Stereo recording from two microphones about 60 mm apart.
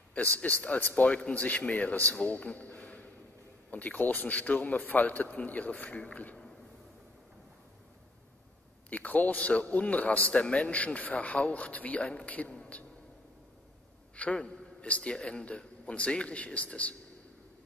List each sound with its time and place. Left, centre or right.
0.1 s a man's voice: left
8.9 s a man's voice: left
14.1 s a man's voice: left